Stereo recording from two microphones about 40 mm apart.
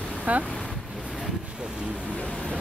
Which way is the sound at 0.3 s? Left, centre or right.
Right.